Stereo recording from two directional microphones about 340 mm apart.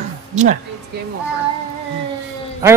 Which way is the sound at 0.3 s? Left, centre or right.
Right.